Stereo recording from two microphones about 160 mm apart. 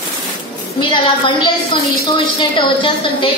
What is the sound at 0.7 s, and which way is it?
A woman's voice, 30° left (ahead or behind).